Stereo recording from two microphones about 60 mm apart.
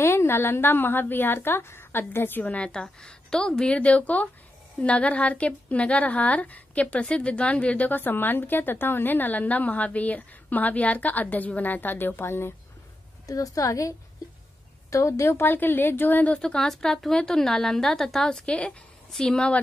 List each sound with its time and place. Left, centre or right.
0.0 s a woman's voice: left
2.5 s a woman's voice: centre; by 12.5 s left
13.3 s a woman's voice: left
14.9 s a woman's voice: left
15.4 s a woman's voice: left
16.3 s speech: centre